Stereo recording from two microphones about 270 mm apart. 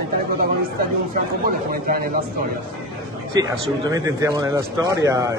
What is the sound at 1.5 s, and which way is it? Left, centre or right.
Speech, right.